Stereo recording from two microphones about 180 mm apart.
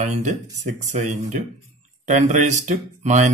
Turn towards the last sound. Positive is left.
turn(degrees=-40)  # may be behind; listen again after turning